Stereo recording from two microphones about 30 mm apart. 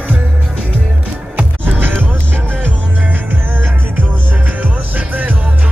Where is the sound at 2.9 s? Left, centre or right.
Right.